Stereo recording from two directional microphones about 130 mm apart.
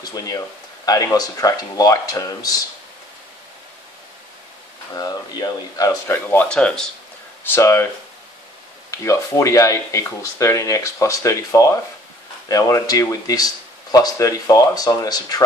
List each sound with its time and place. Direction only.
0.0 s speech: 30° left (ahead or behind)
4.9 s speech: 30° left (ahead or behind)
6.3 s speech: 10° left (ahead or behind)
7.4 s speech: 20° left (ahead or behind)
8.9 s speech: 20° left (ahead or behind)